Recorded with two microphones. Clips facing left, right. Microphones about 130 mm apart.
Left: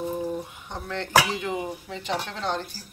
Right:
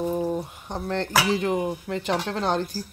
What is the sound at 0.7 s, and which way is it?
Speech, 35° right (ahead or behind).